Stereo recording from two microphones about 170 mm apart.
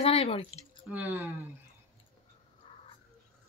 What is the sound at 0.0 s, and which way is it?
Speech, 35° left (ahead or behind).